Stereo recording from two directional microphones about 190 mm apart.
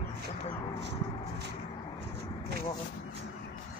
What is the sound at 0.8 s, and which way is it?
Speech, 65° right (ahead or behind).